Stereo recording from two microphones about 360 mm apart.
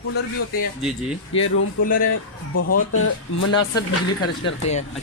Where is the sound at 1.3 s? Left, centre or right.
Left.